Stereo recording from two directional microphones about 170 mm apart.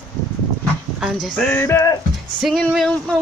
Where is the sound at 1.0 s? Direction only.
5° left (ahead or behind).